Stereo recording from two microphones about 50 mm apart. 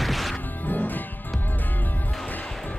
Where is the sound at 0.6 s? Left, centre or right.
Left.